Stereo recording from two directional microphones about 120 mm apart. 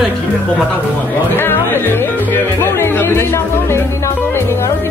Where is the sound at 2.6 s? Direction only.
20° left (ahead or behind).